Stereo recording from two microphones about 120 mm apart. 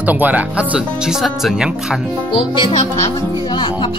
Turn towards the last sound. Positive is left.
turn(degrees=40)  # may be behind; listen again after turning